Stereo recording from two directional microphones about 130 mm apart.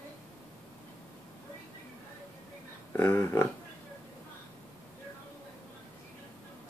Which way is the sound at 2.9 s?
15° left (ahead or behind).